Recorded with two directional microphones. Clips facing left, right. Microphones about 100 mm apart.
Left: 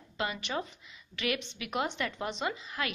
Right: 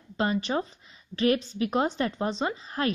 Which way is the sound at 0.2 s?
35° right (ahead or behind).